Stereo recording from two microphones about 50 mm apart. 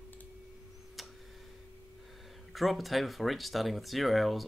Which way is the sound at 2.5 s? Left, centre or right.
Centre.